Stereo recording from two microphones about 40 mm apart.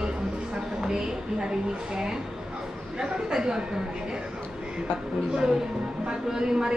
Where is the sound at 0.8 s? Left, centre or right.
Centre.